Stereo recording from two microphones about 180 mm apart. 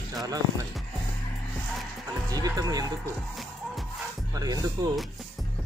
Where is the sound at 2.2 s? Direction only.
20° right (ahead or behind).